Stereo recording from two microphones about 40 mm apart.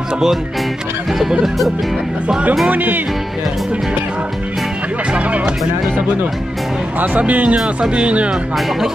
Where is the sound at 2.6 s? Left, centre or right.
Right.